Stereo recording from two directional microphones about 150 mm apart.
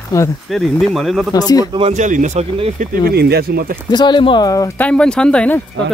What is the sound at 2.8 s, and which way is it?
Speech, 85° right.